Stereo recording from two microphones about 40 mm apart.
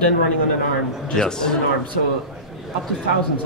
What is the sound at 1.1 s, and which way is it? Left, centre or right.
Speech, centre.